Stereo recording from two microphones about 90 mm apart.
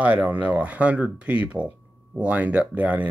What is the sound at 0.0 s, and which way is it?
Speech, 15° right (ahead or behind).